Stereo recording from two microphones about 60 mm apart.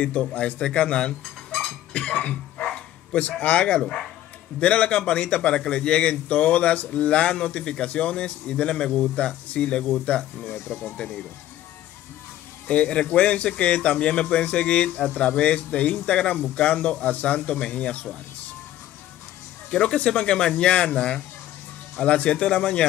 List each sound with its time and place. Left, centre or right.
0.0 s a man's voice: left
12.6 s a man's voice: centre
19.7 s a man's voice: centre